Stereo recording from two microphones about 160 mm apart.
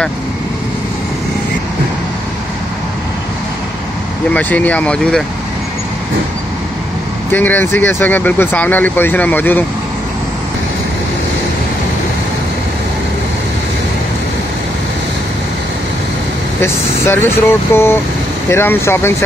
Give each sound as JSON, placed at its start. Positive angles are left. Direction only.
{"t": 4.3, "sound": "speech", "side_deg": 10}
{"t": 7.3, "sound": "speech", "side_deg": 10}
{"t": 16.6, "sound": "speech", "side_deg": 15}